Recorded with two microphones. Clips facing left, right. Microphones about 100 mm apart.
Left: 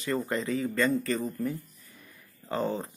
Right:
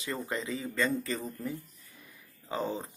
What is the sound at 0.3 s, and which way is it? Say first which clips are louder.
Speech: left 5 dB; centre (ahead or behind).